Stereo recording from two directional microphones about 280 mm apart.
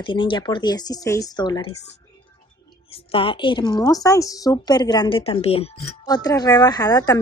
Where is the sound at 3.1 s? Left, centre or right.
Centre.